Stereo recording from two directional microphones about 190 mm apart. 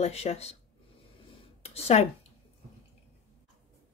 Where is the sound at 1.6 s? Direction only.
35° left (ahead or behind).